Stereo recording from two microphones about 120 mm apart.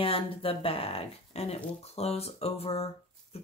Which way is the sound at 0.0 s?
50° left (ahead or behind).